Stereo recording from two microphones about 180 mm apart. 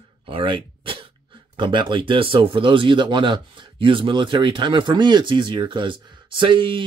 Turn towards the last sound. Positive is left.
turn(degrees=-25)  # may be behind; listen again after turning